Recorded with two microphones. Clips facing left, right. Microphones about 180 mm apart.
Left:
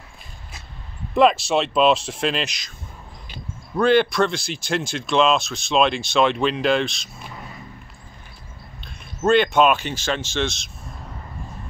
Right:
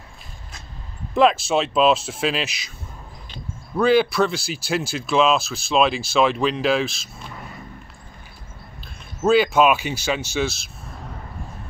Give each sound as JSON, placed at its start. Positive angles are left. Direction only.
{"t": 1.1, "sound": "speech", "side_deg": 0}
{"t": 3.7, "sound": "speech", "side_deg": -5}
{"t": 8.8, "sound": "speech", "side_deg": -5}